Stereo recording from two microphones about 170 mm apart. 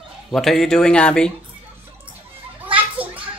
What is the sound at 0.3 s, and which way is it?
Speech, centre (ahead or behind).